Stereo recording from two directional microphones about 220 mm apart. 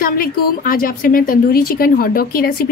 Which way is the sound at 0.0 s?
40° left (ahead or behind).